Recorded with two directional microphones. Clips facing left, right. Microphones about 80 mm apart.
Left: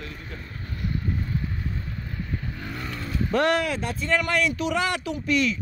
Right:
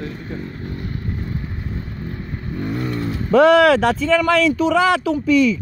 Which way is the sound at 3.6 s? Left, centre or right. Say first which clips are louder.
Right 14 dB; right.